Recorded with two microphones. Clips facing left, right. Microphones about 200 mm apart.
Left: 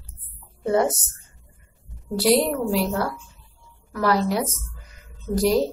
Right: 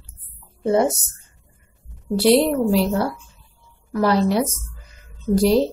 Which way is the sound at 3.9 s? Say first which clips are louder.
Right 4 dB; 25° right (ahead or behind).